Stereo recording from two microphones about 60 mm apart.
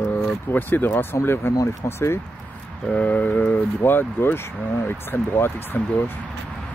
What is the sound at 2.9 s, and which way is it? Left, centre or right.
Speech, left.